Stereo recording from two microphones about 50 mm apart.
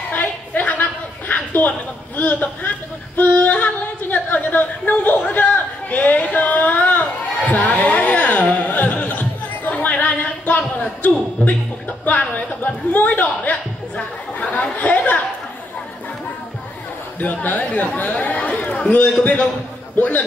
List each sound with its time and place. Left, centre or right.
0.1 s a sound: left
14.4 s chatter: left
17.2 s a man's voice: left